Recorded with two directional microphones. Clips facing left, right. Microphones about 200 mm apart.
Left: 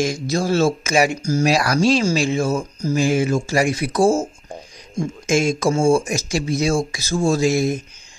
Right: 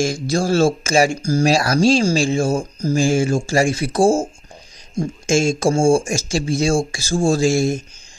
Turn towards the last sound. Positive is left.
turn(degrees=-30)  # may be behind; listen again after turning